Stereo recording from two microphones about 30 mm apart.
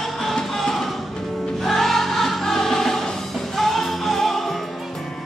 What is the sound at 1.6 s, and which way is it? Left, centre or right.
Choir, centre.